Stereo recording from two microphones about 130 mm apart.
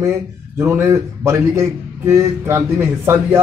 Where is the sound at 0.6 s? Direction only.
20° right (ahead or behind).